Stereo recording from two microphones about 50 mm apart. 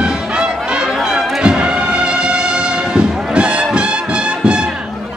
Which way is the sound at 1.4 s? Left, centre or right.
Centre.